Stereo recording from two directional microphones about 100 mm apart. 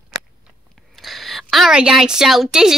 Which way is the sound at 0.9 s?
Centre (ahead or behind).